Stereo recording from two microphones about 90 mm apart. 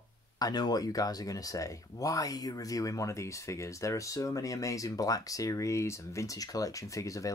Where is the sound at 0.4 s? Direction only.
50° left (ahead or behind).